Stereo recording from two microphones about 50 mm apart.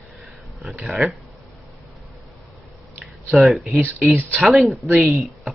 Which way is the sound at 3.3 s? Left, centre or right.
Centre.